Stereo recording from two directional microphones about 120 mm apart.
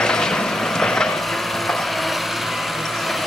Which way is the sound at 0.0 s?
5° left (ahead or behind).